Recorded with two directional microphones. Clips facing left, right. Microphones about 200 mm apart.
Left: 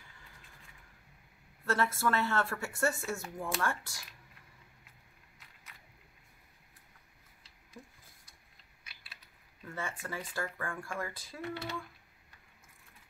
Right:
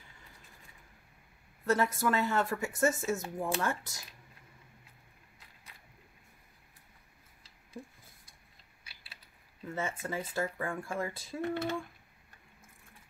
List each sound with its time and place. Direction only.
1.7 s speech: 15° right (ahead or behind)
8.8 s typing: 30° right (ahead or behind)
9.7 s speech: 20° right (ahead or behind)
11.4 s speech: 45° right (ahead or behind)